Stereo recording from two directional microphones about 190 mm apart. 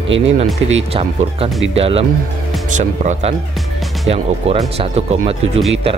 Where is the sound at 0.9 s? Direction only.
30° right (ahead or behind).